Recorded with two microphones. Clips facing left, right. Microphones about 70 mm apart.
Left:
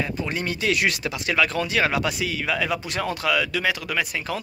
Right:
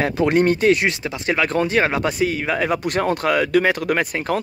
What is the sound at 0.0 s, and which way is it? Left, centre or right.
Speech, right.